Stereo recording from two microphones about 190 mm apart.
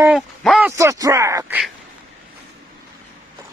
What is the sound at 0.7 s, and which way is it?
Speech, 15° right (ahead or behind).